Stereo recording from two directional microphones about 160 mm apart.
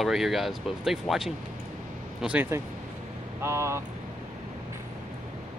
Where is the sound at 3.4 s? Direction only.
15° right (ahead or behind).